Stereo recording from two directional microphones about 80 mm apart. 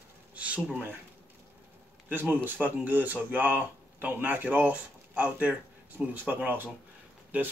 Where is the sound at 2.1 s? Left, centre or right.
Right.